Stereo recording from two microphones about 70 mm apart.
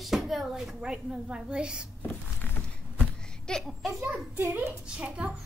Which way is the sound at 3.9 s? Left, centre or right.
Right.